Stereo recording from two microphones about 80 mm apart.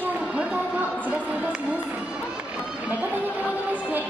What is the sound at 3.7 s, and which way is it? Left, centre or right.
Music, right.